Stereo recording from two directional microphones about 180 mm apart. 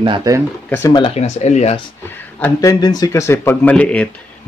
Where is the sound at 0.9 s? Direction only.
30° left (ahead or behind).